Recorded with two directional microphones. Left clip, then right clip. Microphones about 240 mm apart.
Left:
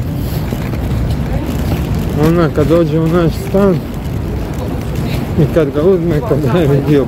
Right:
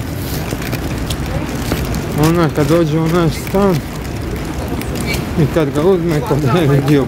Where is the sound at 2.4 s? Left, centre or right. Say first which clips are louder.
Left 3 dB; centre.